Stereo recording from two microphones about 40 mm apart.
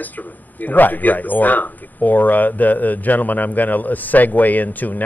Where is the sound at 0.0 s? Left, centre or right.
Left.